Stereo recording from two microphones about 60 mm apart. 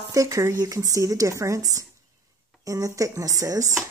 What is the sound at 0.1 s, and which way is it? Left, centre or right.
Speech, right.